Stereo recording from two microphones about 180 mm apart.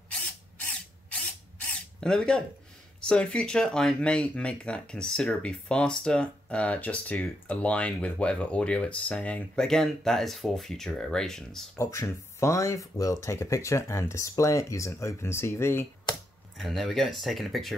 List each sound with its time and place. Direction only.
1.7 s zipper: 5° left (ahead or behind)
3.0 s speech: 5° left (ahead or behind)
11.8 s speech: 15° left (ahead or behind)
16.5 s speech: centre (ahead or behind)